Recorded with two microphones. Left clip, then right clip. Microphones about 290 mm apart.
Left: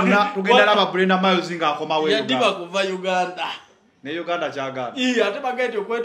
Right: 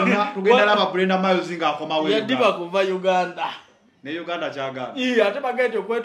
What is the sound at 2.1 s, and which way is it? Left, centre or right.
Speech, right.